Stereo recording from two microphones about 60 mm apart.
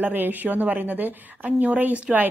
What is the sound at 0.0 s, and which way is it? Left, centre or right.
Speech, right.